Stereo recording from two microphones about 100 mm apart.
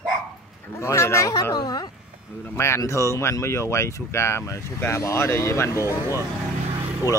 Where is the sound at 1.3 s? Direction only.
40° left (ahead or behind).